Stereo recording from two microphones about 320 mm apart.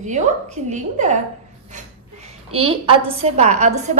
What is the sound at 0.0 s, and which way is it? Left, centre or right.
Speech, right.